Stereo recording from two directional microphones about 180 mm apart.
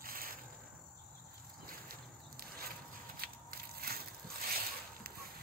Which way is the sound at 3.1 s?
55° right (ahead or behind).